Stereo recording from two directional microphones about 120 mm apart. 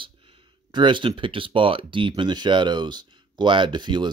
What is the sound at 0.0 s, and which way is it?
Speech, 50° right (ahead or behind).